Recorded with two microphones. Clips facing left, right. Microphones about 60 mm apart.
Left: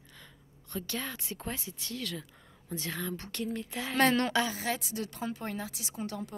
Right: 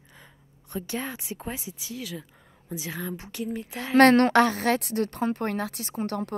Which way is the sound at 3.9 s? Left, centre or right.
Right.